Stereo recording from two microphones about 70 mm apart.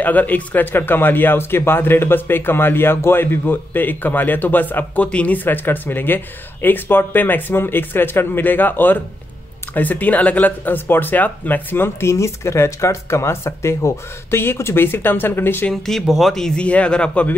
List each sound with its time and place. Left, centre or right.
0.0 s speech: left
15.7 s speech: centre
16.6 s speech: centre